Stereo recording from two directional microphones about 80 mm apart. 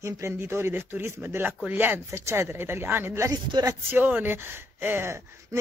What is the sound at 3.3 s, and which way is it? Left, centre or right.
Speech, right.